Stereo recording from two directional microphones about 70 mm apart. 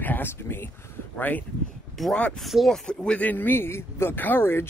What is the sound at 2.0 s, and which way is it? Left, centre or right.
Speech, centre.